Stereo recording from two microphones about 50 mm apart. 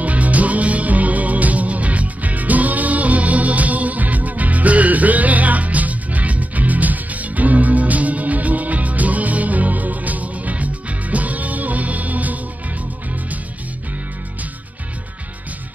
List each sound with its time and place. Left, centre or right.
0.0 s music: right